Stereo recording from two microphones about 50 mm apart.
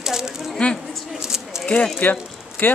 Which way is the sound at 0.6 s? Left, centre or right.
Left.